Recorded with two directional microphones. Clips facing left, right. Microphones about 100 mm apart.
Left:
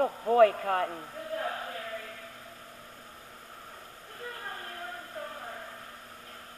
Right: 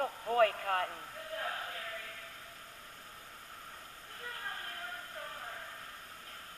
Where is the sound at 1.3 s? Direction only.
20° left (ahead or behind).